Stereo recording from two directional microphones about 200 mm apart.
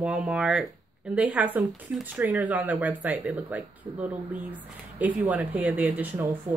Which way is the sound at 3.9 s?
15° right (ahead or behind).